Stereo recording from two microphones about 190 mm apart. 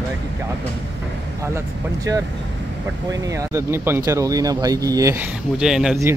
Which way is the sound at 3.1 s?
20° right (ahead or behind).